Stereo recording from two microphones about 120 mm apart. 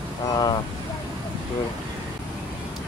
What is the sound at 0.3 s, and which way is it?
Speech, 35° left (ahead or behind).